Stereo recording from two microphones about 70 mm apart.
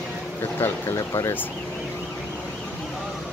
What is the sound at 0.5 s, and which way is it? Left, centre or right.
Speech, left.